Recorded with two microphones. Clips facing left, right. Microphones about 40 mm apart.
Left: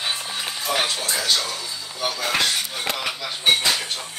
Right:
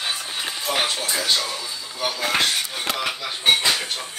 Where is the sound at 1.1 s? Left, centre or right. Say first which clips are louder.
Even; centre.